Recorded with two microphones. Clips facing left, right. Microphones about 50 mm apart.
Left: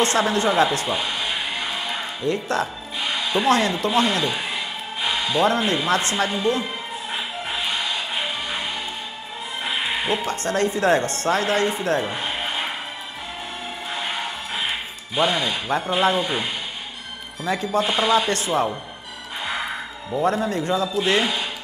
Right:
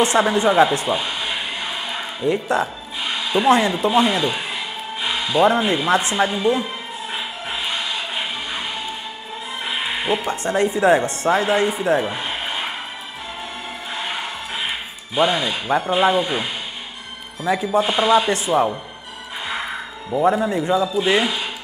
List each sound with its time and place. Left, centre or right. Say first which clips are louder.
0.0 s speech: right 3 dB; centre
1.9 s music: right 5 dB; centre
3.4 s speech: right 4 dB; centre
9.7 s speech: right 1 dB; centre
15.1 s speech: right 2 dB; right
17.5 s speech: right 3 dB; centre
20.2 s speech: right 4 dB; centre